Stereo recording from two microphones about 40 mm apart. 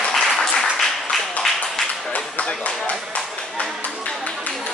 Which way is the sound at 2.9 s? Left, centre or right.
Left.